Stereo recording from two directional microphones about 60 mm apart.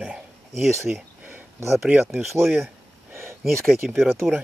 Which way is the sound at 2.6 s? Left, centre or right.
Right.